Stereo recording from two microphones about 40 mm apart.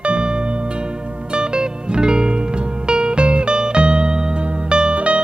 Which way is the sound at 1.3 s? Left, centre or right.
Right.